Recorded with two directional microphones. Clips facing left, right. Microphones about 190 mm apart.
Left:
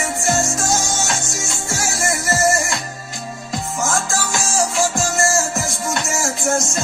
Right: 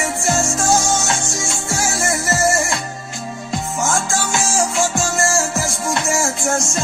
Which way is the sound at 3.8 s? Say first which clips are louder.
Right 1 dB; 35° left (ahead or behind).